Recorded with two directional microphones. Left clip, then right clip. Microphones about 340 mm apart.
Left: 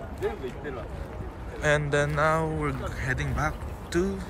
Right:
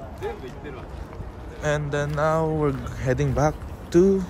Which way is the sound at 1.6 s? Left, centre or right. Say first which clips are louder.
Left 1 dB; centre.